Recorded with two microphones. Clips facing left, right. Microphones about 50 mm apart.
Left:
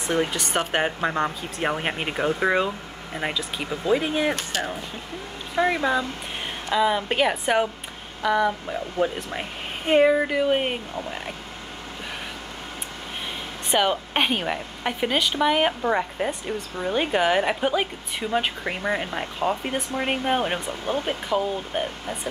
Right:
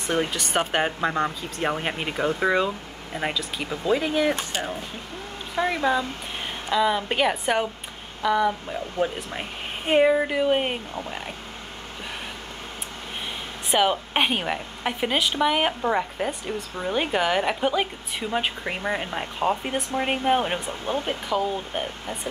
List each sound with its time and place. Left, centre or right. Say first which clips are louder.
0.5 s a woman's voice: even; centre
5.6 s speech: left 3 dB; centre
6.7 s a woman's voice: left 1 dB; centre
13.7 s a woman's voice: even; centre